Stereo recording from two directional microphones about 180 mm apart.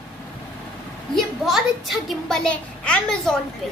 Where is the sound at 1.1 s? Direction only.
Centre (ahead or behind).